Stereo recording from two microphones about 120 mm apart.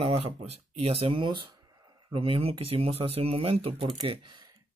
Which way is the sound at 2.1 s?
50° right (ahead or behind).